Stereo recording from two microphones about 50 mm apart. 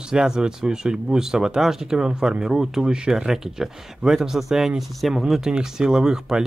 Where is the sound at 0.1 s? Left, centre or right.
Centre.